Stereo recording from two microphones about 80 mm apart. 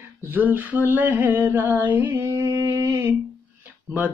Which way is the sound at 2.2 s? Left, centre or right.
Right.